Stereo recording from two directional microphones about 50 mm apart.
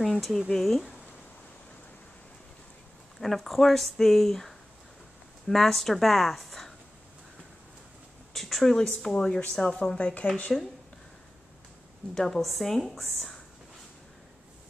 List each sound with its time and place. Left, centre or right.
0.0 s speech: centre
3.2 s speech: centre
8.3 s speech: centre; by 10.5 s left
12.1 s speech: centre